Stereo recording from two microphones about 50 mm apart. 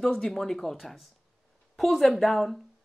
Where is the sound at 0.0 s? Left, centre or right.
Centre.